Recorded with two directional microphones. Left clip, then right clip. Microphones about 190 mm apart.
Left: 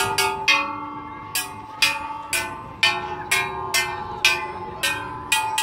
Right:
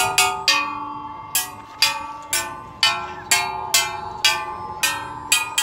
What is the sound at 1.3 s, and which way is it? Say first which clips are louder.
Music: even; 40° right (ahead or behind).